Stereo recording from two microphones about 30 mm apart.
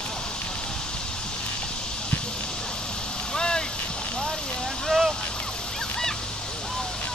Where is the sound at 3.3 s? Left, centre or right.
Left.